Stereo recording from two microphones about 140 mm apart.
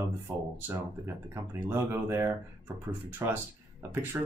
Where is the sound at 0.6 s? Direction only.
15° right (ahead or behind).